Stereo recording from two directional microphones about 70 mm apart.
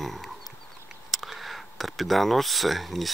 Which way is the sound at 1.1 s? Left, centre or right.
Centre.